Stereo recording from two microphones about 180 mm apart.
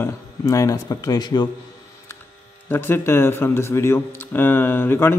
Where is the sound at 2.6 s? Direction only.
10° left (ahead or behind).